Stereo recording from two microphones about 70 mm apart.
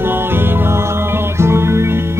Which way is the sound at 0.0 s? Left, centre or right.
Right.